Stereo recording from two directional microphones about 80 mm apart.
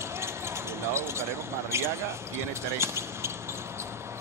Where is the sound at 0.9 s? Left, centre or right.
Right.